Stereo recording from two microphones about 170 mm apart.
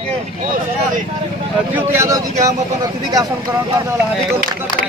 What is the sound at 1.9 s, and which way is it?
Speech, 15° right (ahead or behind).